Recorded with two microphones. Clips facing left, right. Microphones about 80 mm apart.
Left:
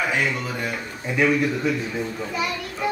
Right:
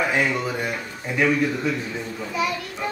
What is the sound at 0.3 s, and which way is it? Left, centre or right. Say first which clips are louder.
A child's voice: right 2 dB; centre.